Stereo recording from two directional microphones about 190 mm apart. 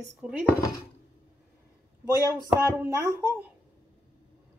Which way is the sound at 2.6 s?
15° right (ahead or behind).